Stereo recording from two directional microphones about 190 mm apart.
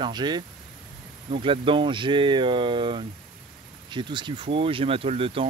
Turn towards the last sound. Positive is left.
turn(degrees=-30)  # may be behind; listen again after turning